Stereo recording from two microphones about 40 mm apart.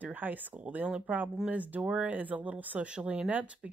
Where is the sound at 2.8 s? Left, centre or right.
Right.